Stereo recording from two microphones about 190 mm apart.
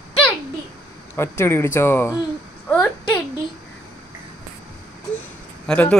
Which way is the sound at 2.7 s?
10° left (ahead or behind).